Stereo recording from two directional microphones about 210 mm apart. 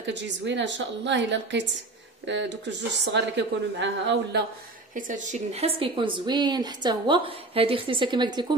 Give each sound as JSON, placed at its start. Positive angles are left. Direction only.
{"t": 0.0, "sound": "speech", "side_deg": -55}
{"t": 4.9, "sound": "a woman's voice", "side_deg": -40}